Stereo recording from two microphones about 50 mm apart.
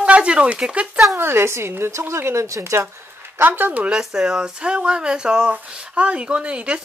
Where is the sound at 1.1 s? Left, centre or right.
Right.